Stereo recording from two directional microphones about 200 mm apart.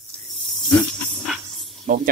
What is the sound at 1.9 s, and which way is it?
Speech, 45° right (ahead or behind).